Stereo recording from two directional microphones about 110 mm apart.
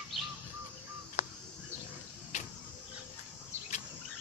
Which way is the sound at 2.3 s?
90° left.